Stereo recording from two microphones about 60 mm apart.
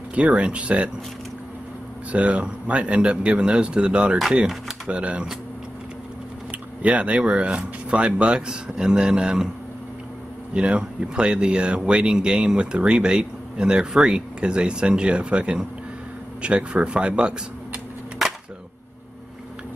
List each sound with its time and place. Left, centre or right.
0.1 s speech: centre
2.1 s speech: right
6.8 s speech: right
10.5 s speech: centre